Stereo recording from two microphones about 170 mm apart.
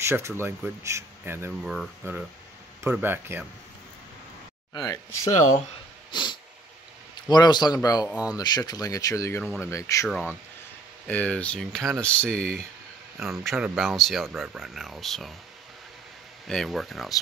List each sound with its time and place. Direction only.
0.0 s speech: 15° right (ahead or behind)
1.6 s speech: centre (ahead or behind)
2.8 s speech: 10° right (ahead or behind)
4.7 s speech: 20° left (ahead or behind)
7.2 s speech: 25° left (ahead or behind)
9.4 s speech: centre (ahead or behind)
9.7 s speech: 20° left (ahead or behind)
10.0 s speech: centre (ahead or behind)
16.4 s speech: centre (ahead or behind)